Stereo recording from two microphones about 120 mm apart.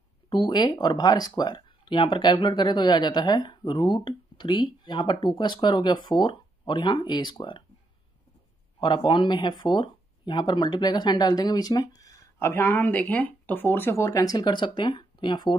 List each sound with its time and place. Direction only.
0.3 s speech: 40° left (ahead or behind)
8.7 s speech: 40° left (ahead or behind)